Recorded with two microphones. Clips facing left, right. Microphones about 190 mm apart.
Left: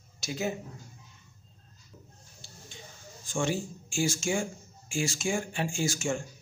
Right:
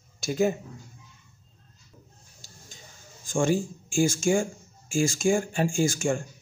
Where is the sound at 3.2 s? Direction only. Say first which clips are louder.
Right 6 dB; 45° right (ahead or behind).